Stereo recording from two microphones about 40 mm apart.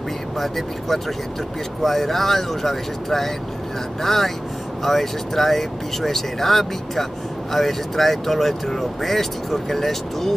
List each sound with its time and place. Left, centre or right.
0.4 s speech: centre